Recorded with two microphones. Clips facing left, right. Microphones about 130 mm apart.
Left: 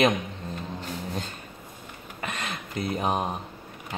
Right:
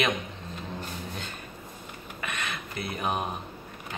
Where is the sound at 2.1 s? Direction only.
40° left (ahead or behind).